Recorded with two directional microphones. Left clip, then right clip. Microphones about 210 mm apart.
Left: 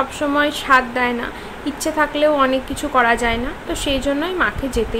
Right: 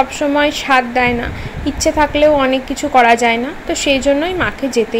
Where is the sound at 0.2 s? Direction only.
10° right (ahead or behind).